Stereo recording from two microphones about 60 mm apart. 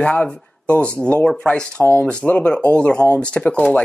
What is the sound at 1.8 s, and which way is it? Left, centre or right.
Speech, left.